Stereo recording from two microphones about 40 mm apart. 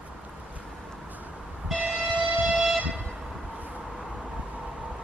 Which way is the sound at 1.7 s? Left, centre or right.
Right.